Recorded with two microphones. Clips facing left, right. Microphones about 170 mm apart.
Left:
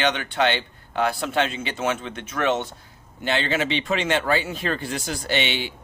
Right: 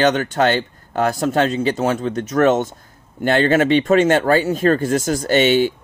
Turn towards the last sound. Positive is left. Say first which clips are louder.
# right 11 dB
turn(degrees=-45)  # may be behind; listen again after turning